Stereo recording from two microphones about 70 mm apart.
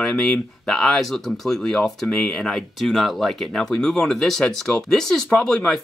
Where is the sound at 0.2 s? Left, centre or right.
Centre.